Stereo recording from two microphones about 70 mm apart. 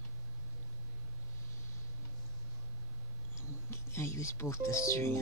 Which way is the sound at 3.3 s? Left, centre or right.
Left.